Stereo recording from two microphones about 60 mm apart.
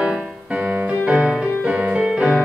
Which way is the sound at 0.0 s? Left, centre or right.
Centre.